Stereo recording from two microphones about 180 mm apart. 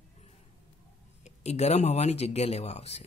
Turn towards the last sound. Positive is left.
turn(degrees=35)  # may be behind; listen again after turning